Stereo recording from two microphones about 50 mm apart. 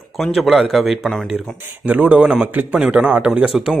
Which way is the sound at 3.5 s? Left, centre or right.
Centre.